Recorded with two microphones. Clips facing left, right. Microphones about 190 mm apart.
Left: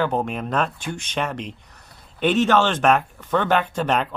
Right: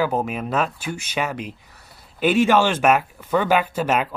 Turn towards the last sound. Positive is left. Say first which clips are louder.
# right 1 dB
turn(degrees=-5)  # may be behind; listen again after turning